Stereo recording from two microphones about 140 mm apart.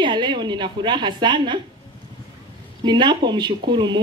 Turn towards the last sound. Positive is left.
turn(degrees=-30)  # may be behind; listen again after turning